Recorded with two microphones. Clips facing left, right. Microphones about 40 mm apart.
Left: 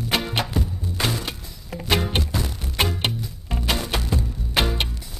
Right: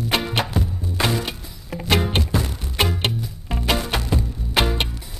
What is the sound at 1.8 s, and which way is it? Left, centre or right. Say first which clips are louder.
Music: right 2 dB; centre.